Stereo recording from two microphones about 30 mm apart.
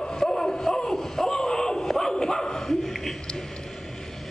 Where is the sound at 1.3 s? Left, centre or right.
Left.